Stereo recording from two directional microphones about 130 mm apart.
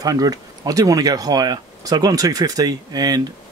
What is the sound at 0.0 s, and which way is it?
Speech, 30° right (ahead or behind).